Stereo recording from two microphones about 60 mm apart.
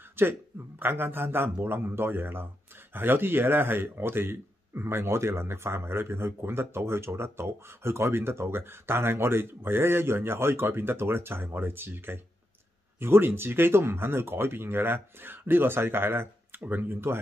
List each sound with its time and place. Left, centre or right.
0.1 s speech: right